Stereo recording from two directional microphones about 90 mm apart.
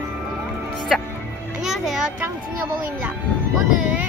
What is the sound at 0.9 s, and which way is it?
Speech, centre (ahead or behind).